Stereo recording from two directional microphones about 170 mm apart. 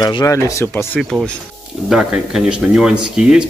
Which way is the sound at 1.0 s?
Centre (ahead or behind).